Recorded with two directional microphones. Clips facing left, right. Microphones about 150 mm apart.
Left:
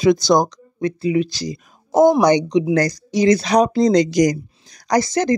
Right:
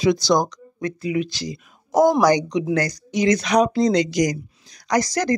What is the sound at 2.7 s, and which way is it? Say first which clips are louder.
Speech: left 4 dB; 35° left (ahead or behind).